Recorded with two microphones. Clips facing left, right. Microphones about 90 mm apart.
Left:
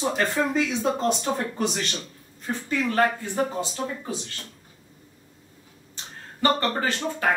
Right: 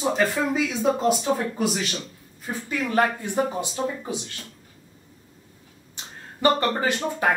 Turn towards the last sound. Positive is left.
turn(degrees=-15)  # may be behind; listen again after turning